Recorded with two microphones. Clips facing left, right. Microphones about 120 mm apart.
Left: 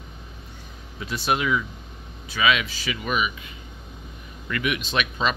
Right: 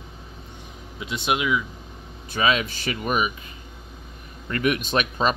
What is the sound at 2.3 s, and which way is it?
Speech, 40° right (ahead or behind).